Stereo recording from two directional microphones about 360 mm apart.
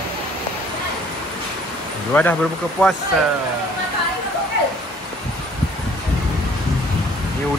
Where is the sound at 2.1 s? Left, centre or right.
Centre.